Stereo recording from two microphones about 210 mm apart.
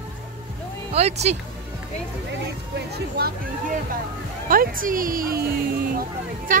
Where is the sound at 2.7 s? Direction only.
50° right (ahead or behind).